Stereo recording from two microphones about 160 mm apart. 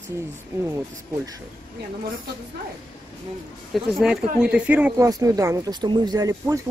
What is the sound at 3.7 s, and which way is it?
Speech, 5° right (ahead or behind).